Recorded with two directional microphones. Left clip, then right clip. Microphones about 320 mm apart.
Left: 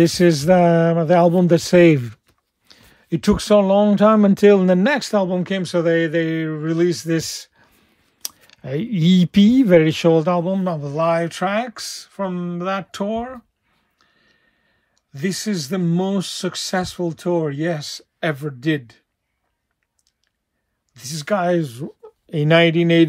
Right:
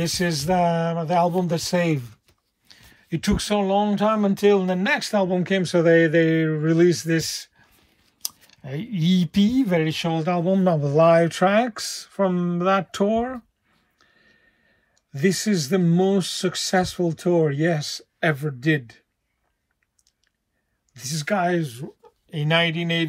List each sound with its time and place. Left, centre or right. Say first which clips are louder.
0.0 s a man's voice: left 9 dB; left
2.7 s speech: left 5 dB; centre
8.6 s speech: left 6 dB; centre
13.9 s a sound: right 1 dB; centre
15.0 s speech: right 2 dB; centre
20.9 s a man's voice: left 3 dB; centre; by 23.0 s left